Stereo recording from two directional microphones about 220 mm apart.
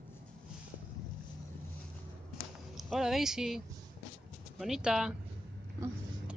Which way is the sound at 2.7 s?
Centre (ahead or behind).